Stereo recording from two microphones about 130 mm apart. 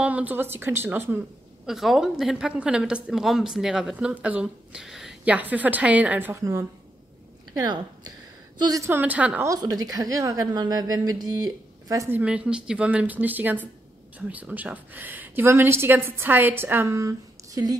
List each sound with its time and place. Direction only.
0.0 s a woman's voice: 10° right (ahead or behind)
1.7 s a woman's voice: centre (ahead or behind)
7.5 s speech: 35° right (ahead or behind)
8.8 s a woman's voice: 15° right (ahead or behind)
9.4 s a woman's voice: 25° right (ahead or behind)
12.2 s a woman's voice: 10° right (ahead or behind); by 17.7 s 25° right (ahead or behind)